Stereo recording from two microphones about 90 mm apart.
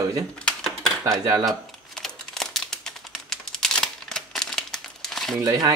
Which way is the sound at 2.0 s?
5° left (ahead or behind).